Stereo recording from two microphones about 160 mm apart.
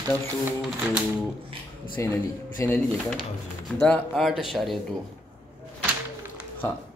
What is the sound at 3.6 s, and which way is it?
Speech, 5° left (ahead or behind).